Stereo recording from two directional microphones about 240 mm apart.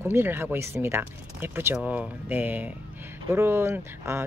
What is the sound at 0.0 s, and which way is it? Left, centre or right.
Speech, centre.